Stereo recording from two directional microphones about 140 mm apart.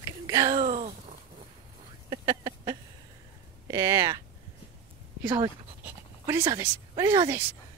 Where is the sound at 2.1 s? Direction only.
25° right (ahead or behind).